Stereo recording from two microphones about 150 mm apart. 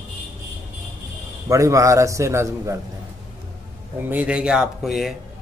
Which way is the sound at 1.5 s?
20° right (ahead or behind).